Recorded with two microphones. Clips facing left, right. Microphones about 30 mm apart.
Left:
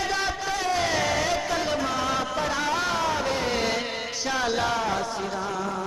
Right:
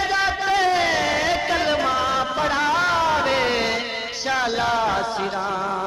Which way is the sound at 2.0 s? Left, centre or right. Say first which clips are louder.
Right 5 dB; right.